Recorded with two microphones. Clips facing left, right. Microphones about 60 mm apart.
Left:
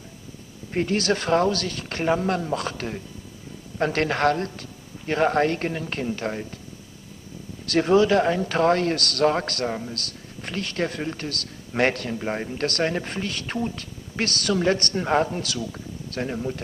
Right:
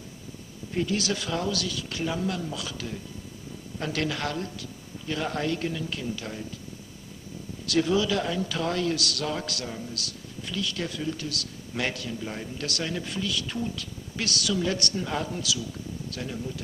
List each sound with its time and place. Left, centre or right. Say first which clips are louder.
0.7 s speech: left 5 dB; left
7.6 s speech: left 6 dB; left